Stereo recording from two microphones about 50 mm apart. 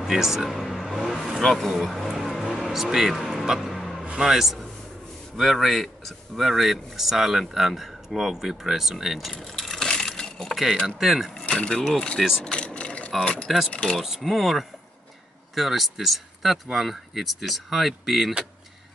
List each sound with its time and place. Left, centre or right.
0.0 s a man's voice: centre
0.5 s vehicle: centre
4.2 s a man's voice: centre
9.3 s a sound: centre
10.5 s a man's voice: centre
11.3 s speech: centre
12.4 s vehicle: centre
13.2 s speech: left
13.5 s a man's voice: centre